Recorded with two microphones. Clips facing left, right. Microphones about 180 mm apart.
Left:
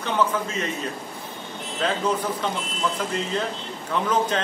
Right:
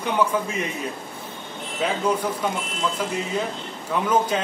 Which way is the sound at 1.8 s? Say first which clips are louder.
Right 1 dB; 10° right (ahead or behind).